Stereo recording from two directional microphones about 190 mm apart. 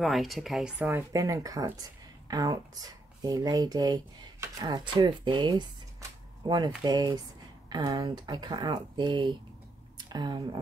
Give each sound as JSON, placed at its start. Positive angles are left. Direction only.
{"t": 0.0, "sound": "speech", "side_deg": 0}
{"t": 0.8, "sound": "speech", "side_deg": -15}